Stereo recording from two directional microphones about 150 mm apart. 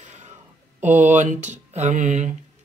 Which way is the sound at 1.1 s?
55° right (ahead or behind).